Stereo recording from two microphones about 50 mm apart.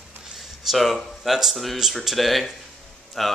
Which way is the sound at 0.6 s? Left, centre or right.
Centre.